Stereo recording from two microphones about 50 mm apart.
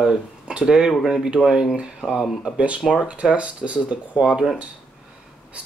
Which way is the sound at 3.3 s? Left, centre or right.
Right.